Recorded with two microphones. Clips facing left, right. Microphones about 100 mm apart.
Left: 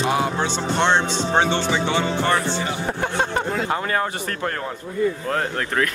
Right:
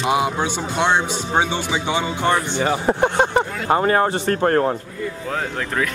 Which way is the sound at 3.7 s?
35° right (ahead or behind).